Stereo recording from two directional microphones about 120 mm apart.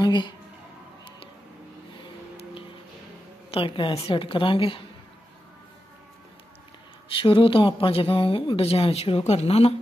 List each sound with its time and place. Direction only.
0.0 s a woman's voice: 40° left (ahead or behind)
3.5 s speech: 45° left (ahead or behind)
7.2 s speech: 50° left (ahead or behind)